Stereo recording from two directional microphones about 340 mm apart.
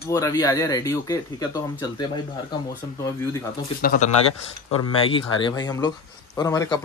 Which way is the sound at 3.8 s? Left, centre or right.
Left.